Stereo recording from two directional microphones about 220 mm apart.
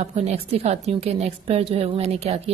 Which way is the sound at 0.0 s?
30° right (ahead or behind).